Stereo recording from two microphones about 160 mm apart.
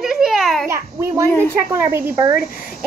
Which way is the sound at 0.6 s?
15° right (ahead or behind).